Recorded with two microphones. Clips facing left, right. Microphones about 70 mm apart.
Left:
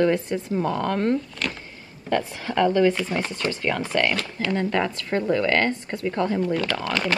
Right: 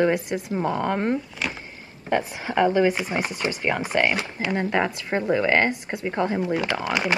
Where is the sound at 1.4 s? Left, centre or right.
Centre.